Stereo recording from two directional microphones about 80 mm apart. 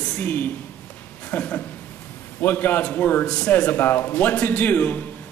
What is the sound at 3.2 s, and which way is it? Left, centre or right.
A man's voice, centre.